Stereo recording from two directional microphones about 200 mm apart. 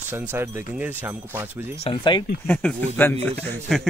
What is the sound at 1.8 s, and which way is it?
Speech, 25° left (ahead or behind).